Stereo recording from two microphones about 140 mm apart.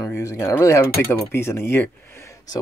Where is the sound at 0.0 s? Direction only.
20° left (ahead or behind).